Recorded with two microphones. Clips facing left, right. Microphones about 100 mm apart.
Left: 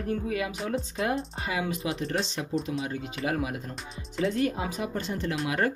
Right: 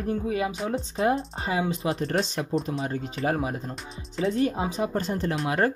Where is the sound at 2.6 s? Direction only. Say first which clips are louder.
Right 2 dB; 40° right (ahead or behind).